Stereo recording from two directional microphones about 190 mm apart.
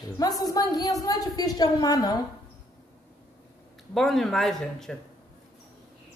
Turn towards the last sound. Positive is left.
turn(degrees=0)  # may be behind; listen again after turning